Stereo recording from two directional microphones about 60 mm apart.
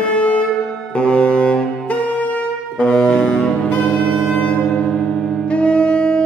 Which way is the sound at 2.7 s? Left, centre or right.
Centre.